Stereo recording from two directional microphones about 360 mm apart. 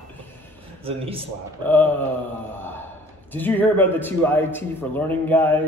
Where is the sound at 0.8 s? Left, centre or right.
Centre.